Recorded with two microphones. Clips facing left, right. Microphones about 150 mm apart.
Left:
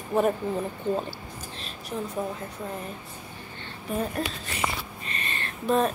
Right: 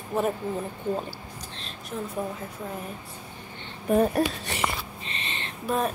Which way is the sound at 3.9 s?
60° right (ahead or behind).